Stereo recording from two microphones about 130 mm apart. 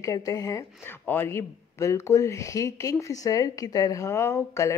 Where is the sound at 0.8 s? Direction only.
15° left (ahead or behind).